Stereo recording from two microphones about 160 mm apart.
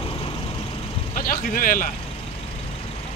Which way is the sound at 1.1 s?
60° left (ahead or behind).